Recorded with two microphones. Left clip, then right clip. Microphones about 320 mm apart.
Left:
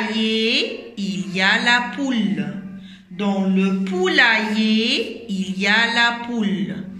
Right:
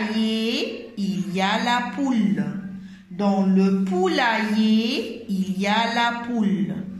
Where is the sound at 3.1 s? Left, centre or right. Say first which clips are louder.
Even; centre.